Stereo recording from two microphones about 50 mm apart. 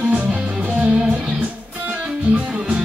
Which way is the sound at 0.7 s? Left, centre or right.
Right.